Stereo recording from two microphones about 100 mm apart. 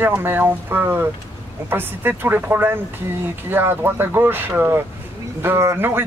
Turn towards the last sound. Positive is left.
turn(degrees=-25)  # may be behind; listen again after turning